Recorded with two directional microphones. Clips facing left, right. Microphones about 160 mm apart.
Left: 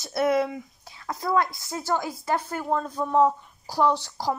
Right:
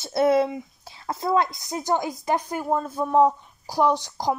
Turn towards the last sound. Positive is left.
turn(degrees=-15)  # may be behind; listen again after turning